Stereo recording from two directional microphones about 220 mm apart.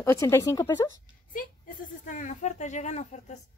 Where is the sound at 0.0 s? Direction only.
10° left (ahead or behind).